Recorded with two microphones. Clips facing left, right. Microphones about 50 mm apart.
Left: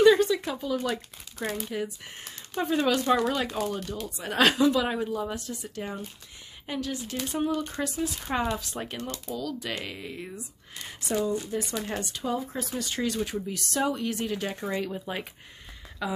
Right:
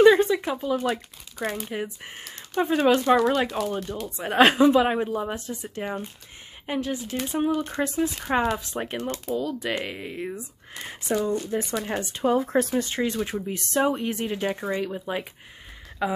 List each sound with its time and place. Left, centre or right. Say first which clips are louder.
0.0 s speech: right 3 dB; right
7.7 s speech: right 5 dB; right
12.4 s speech: right 10 dB; right
12.7 s speech: right 4 dB; right; by 15.2 s centre
16.0 s speech: right 5 dB; right